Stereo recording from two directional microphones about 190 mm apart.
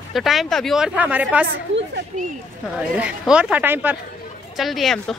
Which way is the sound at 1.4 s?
70° right (ahead or behind).